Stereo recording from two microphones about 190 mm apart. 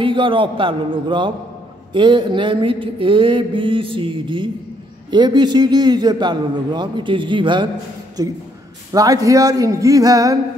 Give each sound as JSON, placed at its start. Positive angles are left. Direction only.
{"t": 0.0, "sound": "mantra", "side_deg": -25}